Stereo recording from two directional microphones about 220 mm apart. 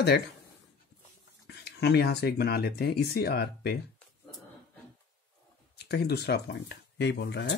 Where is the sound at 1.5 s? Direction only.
50° left (ahead or behind).